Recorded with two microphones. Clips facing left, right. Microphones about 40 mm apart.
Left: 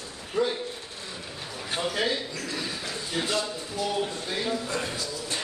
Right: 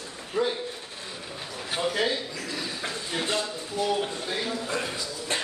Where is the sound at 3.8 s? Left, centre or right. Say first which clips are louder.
Right 1 dB; centre.